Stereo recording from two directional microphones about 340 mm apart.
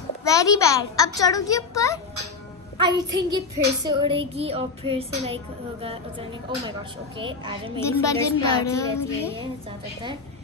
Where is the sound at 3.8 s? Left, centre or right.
Centre.